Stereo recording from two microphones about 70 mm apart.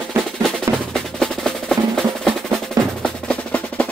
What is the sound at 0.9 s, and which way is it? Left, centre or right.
Percussion, centre.